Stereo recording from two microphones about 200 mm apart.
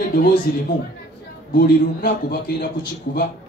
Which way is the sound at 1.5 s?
45° left (ahead or behind).